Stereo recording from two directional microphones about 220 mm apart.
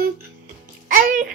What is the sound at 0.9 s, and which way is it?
Babbling, 40° right (ahead or behind).